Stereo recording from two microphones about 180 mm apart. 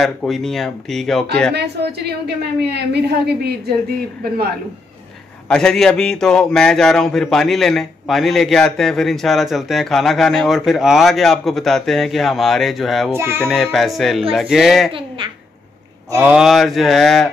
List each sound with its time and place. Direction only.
0.0 s a man's voice: centre (ahead or behind)
1.5 s a woman's voice: 65° right (ahead or behind)
5.5 s a man's voice: 5° left (ahead or behind)
13.1 s speech: 15° right (ahead or behind)
13.4 s a man's voice: 5° left (ahead or behind)
14.9 s speech: 30° right (ahead or behind)
16.3 s a man's voice: centre (ahead or behind)